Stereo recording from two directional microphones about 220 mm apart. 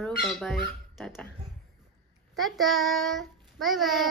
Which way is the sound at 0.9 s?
Centre (ahead or behind).